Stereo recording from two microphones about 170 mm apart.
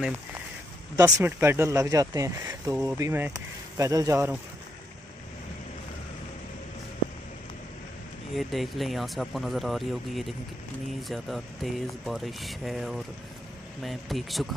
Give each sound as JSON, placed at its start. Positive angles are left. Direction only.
{"t": 0.9, "sound": "speech", "side_deg": -20}
{"t": 8.4, "sound": "speech", "side_deg": 0}